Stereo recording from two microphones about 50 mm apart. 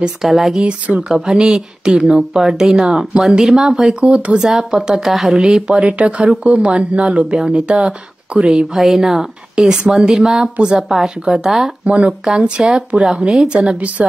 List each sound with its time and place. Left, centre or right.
0.2 s speech: centre
0.6 s a woman's voice: right
1.1 s speech: centre
4.4 s a woman's voice: centre
8.7 s speech: centre
11.8 s speech: right
13.6 s a woman's voice: right